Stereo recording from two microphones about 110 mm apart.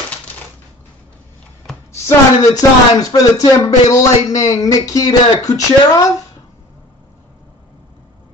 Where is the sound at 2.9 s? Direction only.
35° left (ahead or behind).